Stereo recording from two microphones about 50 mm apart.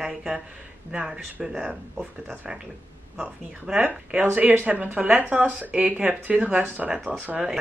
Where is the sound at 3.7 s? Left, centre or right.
Centre.